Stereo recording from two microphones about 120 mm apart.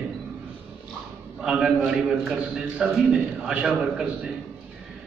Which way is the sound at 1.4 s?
5° right (ahead or behind).